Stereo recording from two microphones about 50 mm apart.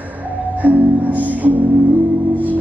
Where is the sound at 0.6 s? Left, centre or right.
Right.